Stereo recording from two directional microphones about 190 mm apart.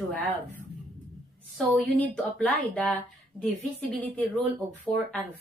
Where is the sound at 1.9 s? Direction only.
10° left (ahead or behind).